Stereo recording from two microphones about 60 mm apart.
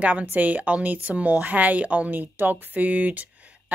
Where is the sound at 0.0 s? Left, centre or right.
Right.